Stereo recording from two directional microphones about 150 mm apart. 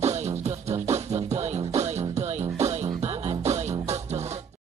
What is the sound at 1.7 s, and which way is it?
Music, 45° right (ahead or behind).